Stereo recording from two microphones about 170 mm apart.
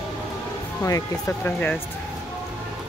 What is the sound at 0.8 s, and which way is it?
Speech, 15° left (ahead or behind).